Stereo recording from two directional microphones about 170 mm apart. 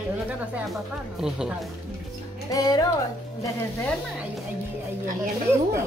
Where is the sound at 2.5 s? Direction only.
20° left (ahead or behind).